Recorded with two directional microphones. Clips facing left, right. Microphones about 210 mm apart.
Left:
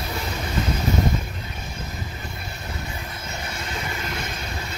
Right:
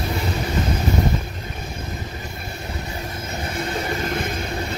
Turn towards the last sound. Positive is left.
turn(degrees=-50)  # may be behind; listen again after turning